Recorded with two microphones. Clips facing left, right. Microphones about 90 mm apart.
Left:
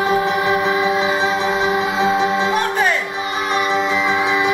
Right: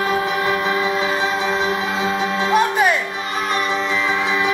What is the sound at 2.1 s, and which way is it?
Music, 10° left (ahead or behind).